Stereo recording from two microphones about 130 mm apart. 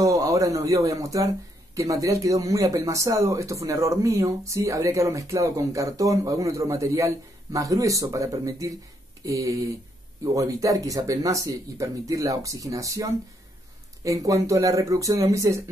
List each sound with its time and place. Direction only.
0.0 s speech: 25° right (ahead or behind)